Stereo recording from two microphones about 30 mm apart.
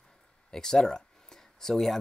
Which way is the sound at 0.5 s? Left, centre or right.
Left.